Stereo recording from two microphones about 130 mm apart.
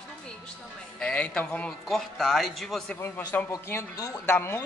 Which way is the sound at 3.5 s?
25° left (ahead or behind).